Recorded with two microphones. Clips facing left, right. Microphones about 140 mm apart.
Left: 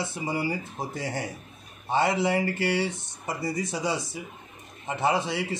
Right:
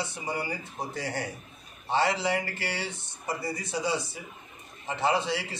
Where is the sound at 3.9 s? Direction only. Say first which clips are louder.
Even; 25° right (ahead or behind).